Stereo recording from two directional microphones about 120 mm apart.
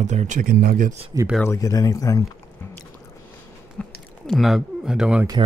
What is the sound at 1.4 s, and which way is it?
Speech, 25° left (ahead or behind).